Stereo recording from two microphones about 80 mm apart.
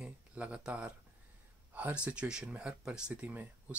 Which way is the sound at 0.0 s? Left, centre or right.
Centre.